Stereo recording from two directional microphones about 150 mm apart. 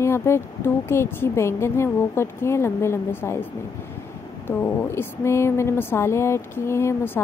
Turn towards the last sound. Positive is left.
turn(degrees=15)  # may be behind; listen again after turning